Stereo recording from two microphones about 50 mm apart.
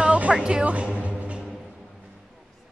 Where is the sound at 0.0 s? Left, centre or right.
Right.